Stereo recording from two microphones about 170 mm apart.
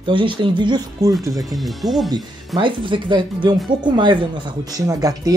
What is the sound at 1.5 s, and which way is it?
Speech, centre (ahead or behind).